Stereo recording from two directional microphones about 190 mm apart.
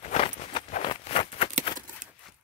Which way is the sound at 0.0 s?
35° left (ahead or behind).